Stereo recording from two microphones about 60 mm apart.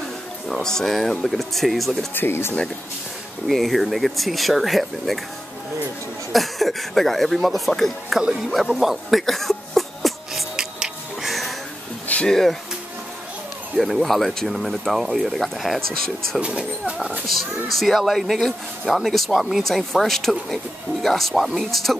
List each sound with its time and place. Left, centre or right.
0.5 s speech: centre
2.1 s speech: left
3.4 s speech: centre
6.3 s speech: centre
8.2 s a sound: centre
12.3 s speech: centre
13.7 s speech: centre
16.3 s speech: centre
17.7 s speech: centre